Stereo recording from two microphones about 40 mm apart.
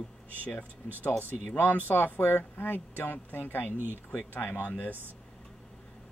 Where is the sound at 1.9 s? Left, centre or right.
Left.